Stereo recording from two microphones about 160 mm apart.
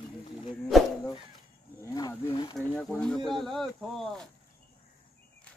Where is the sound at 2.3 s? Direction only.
25° left (ahead or behind).